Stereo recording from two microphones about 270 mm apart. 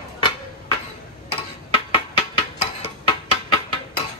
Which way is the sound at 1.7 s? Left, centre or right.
Centre.